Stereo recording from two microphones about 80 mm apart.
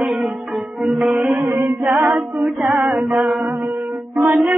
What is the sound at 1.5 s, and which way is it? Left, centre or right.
A capella, right.